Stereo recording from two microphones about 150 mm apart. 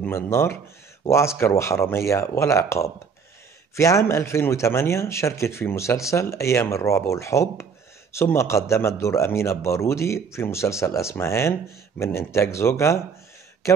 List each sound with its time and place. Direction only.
0.0 s speech: 15° left (ahead or behind)